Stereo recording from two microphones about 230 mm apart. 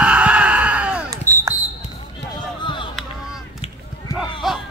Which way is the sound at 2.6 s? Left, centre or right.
Left.